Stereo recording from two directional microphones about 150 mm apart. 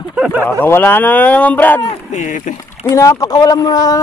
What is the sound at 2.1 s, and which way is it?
Speech, 55° left (ahead or behind).